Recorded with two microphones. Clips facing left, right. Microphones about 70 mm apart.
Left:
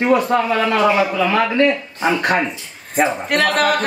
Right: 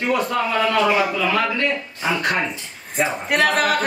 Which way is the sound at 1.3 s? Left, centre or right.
Left.